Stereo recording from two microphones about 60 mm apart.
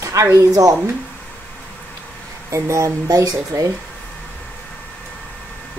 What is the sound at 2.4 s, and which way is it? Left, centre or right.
Speech, right.